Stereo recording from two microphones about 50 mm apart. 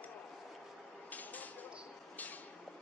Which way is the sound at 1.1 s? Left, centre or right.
Left.